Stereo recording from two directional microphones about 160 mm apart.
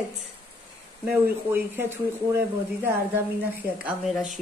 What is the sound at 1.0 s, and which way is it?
Speech, 15° right (ahead or behind).